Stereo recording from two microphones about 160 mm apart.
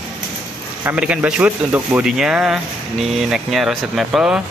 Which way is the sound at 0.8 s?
10° right (ahead or behind).